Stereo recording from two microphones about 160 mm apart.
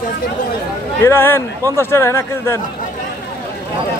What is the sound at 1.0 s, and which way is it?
Speech, 15° left (ahead or behind).